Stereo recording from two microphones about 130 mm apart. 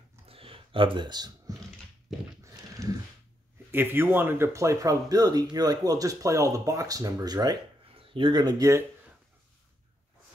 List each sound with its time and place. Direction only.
0.3 s computer keyboard: 45° right (ahead or behind)
2.4 s a sound: 25° right (ahead or behind)
3.7 s speech: 15° right (ahead or behind)